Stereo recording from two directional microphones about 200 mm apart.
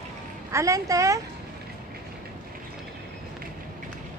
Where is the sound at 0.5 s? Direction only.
15° right (ahead or behind).